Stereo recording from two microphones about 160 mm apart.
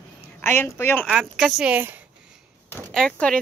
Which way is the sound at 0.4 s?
15° left (ahead or behind).